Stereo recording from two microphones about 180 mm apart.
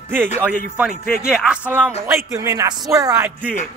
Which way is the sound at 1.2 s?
5° right (ahead or behind).